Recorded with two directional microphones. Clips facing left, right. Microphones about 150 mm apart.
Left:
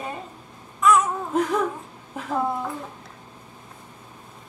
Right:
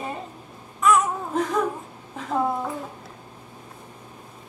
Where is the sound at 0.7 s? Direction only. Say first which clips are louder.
Left 1 dB; centre (ahead or behind).